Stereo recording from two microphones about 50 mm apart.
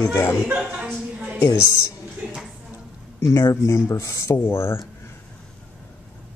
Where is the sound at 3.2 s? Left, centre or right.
Left.